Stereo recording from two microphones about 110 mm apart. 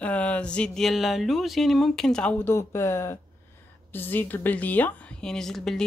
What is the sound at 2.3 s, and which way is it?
A woman's voice, 20° left (ahead or behind).